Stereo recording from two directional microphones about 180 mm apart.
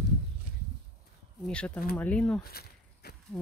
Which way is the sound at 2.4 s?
60° left (ahead or behind).